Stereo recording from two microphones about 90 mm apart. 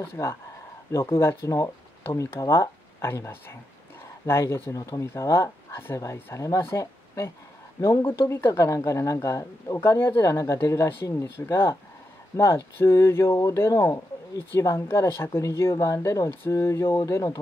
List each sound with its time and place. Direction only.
0.0 s speech: 25° left (ahead or behind)
4.7 s speech: 40° left (ahead or behind)